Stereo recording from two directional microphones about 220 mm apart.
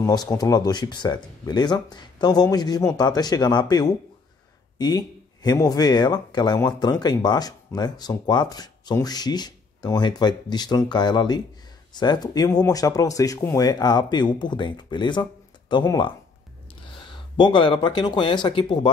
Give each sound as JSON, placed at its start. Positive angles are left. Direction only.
{"t": 0.0, "sound": "speech", "side_deg": 15}